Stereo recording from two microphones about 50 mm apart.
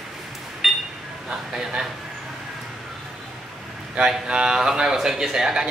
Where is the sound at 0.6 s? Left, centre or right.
Centre.